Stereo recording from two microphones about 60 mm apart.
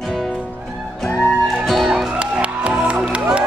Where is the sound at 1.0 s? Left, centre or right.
Centre.